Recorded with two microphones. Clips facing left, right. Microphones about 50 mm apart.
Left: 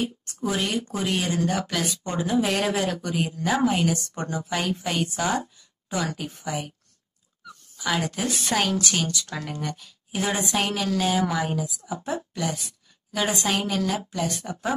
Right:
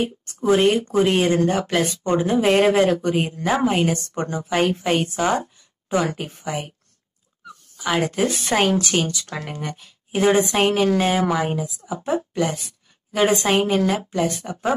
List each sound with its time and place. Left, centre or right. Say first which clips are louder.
0.0 s speech: right 5 dB; right
7.7 s speech: right 5 dB; right